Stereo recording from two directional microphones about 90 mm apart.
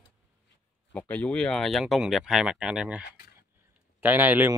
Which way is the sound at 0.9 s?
15° left (ahead or behind).